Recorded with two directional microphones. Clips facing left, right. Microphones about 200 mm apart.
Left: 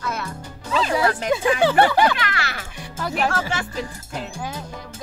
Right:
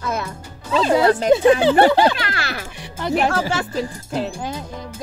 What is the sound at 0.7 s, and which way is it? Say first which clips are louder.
Speech: right 5 dB; 30° right (ahead or behind).